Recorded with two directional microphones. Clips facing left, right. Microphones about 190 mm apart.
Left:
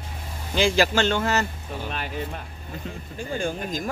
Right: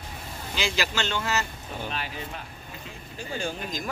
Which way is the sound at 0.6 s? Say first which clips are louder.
Left 8 dB; 50° left (ahead or behind).